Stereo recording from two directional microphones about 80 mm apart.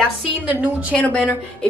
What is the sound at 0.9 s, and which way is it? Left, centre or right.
Speech, centre.